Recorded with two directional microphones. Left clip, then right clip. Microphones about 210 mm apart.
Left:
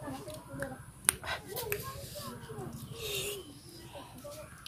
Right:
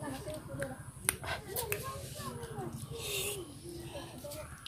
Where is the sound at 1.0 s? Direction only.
20° left (ahead or behind).